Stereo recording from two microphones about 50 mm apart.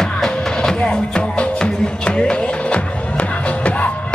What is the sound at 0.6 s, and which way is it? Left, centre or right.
Music, centre.